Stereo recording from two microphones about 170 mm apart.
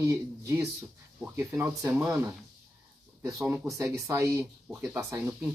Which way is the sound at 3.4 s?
10° right (ahead or behind).